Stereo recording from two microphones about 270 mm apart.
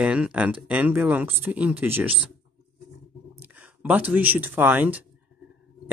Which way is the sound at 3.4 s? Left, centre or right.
Centre.